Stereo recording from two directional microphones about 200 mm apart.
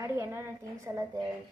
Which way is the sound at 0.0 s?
10° right (ahead or behind).